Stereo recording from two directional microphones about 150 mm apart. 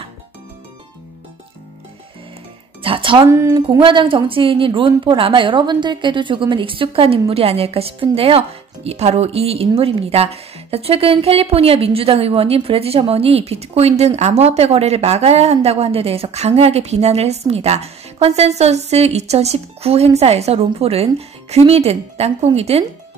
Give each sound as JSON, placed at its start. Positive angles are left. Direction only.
{"t": 2.8, "sound": "speech", "side_deg": -35}
{"t": 3.3, "sound": "speech", "side_deg": -20}
{"t": 3.5, "sound": "speech", "side_deg": -35}